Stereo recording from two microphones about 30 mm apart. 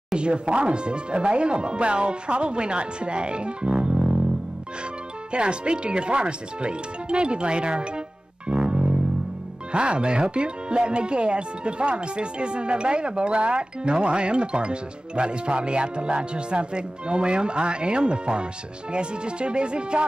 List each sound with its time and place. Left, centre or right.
0.1 s speech: right
3.8 s music: right
5.3 s speech: right
8.5 s music: right
9.7 s speech: right